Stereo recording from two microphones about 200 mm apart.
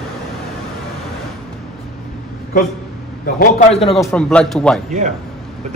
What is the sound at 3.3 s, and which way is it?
Speech, 40° left (ahead or behind).